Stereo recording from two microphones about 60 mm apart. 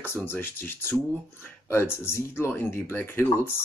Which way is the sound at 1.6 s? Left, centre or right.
Left.